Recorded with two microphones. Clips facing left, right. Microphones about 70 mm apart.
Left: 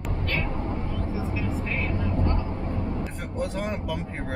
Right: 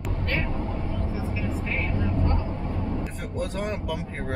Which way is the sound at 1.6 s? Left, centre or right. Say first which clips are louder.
Even; right.